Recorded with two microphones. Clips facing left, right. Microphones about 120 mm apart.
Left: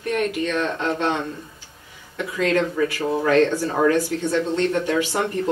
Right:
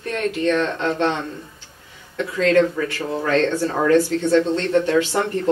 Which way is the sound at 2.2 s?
15° left (ahead or behind).